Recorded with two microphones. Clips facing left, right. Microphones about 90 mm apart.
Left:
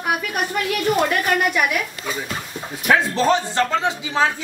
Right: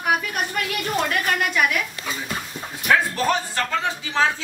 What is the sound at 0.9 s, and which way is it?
Speech, 10° left (ahead or behind).